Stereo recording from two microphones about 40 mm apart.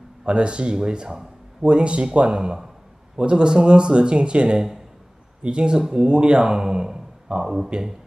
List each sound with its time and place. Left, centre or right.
0.2 s speech: right